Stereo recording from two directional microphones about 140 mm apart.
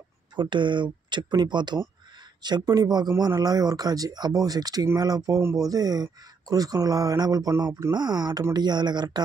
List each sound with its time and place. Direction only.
0.4 s speech: 35° right (ahead or behind)